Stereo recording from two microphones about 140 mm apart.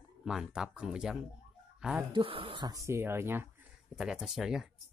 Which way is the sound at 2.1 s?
40° right (ahead or behind).